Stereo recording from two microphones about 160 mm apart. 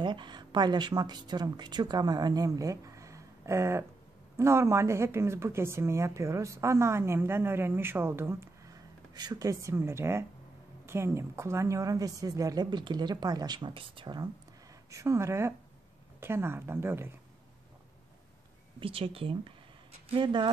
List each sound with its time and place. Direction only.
0.0 s speech: 30° right (ahead or behind)
18.8 s speech: 35° right (ahead or behind)